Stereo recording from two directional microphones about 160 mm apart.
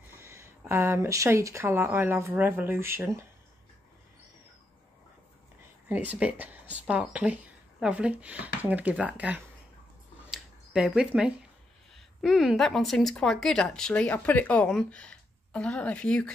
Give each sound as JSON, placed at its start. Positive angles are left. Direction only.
{"t": 0.1, "sound": "speech", "side_deg": -15}
{"t": 5.9, "sound": "speech", "side_deg": -10}
{"t": 10.3, "sound": "a sound", "side_deg": -5}
{"t": 12.2, "sound": "speech", "side_deg": 0}